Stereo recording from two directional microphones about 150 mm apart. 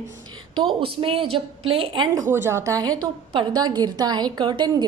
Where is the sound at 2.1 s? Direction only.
15° right (ahead or behind).